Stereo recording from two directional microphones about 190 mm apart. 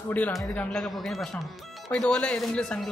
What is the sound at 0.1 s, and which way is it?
Speech, 10° left (ahead or behind).